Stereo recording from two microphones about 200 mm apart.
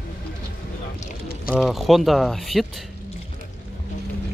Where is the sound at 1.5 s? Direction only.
Centre (ahead or behind).